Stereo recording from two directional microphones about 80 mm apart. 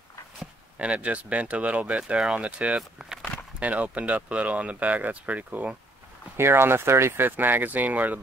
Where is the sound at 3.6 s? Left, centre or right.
Centre.